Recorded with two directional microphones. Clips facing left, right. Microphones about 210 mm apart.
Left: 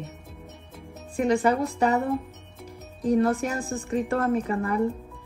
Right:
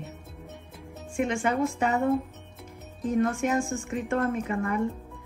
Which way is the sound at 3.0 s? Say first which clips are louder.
Left 3 dB; 35° left (ahead or behind).